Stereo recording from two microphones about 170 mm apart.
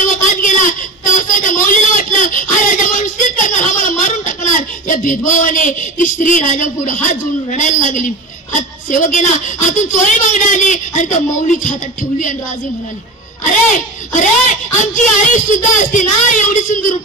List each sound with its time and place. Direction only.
0.0 s a sound: 50° left (ahead or behind)
8.5 s speech: 50° left (ahead or behind)
13.5 s speech: 45° left (ahead or behind)